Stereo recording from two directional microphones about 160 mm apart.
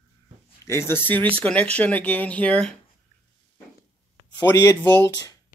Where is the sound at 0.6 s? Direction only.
15° left (ahead or behind).